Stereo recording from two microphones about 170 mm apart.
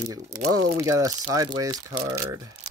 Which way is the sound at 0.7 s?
15° right (ahead or behind).